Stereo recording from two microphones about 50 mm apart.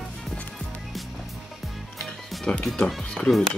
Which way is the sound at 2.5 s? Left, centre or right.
Left.